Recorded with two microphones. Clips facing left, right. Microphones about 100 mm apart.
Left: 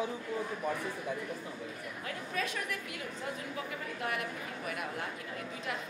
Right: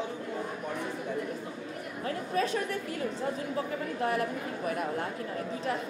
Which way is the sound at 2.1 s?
35° right (ahead or behind).